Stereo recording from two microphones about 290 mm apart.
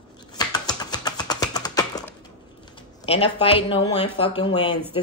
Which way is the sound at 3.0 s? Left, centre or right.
Centre.